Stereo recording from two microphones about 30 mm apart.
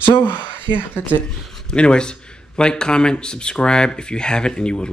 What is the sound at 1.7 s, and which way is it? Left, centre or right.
Speech, left.